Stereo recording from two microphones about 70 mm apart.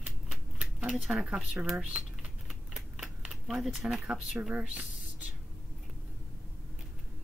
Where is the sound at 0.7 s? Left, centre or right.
Right.